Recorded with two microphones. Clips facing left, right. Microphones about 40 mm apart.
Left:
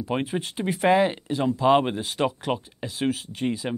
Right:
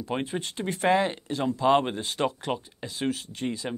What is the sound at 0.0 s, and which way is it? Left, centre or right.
Speech, centre.